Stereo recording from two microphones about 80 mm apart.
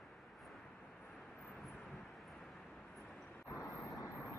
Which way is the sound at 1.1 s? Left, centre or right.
Centre.